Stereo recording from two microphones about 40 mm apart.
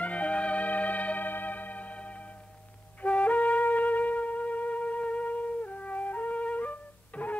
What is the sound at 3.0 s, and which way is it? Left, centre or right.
Wind instrument, left.